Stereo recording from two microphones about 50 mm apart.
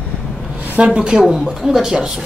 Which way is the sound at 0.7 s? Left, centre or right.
Right.